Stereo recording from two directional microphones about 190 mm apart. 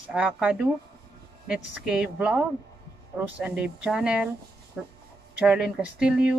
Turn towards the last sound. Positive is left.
turn(degrees=-5)  # may be behind; listen again after turning